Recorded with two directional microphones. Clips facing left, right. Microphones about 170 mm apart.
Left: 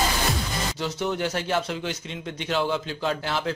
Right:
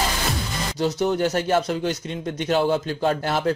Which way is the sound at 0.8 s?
40° right (ahead or behind).